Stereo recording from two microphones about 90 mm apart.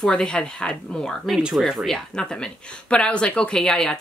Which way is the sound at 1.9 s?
10° left (ahead or behind).